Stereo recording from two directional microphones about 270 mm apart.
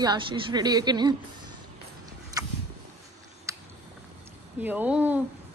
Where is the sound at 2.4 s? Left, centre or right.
Centre.